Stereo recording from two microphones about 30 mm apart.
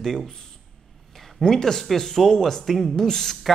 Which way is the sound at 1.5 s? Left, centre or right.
Centre.